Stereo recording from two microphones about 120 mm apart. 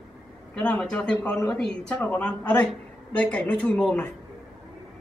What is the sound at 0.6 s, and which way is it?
Speech, 10° left (ahead or behind).